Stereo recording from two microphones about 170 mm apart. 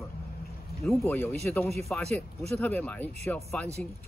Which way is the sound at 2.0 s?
40° right (ahead or behind).